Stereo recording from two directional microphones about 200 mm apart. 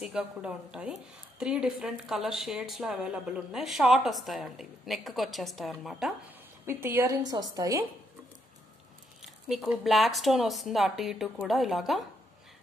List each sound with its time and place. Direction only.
0.0 s speech: 5° right (ahead or behind)
6.6 s a woman's voice: 10° right (ahead or behind)
9.2 s speech: centre (ahead or behind)